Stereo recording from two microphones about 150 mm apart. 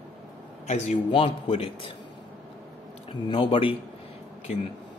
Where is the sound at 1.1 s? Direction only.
35° left (ahead or behind).